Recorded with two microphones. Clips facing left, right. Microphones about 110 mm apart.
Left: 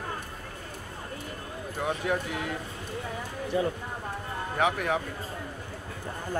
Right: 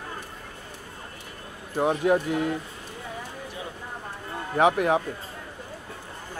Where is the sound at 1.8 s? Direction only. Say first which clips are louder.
Right 7 dB; 35° right (ahead or behind).